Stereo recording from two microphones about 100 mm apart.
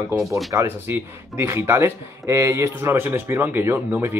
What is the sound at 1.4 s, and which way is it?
A man's voice, 25° right (ahead or behind).